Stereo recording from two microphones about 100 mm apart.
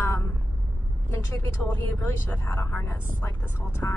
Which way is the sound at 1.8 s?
20° left (ahead or behind).